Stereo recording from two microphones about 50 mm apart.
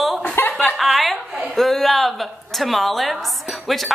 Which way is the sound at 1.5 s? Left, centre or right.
Centre.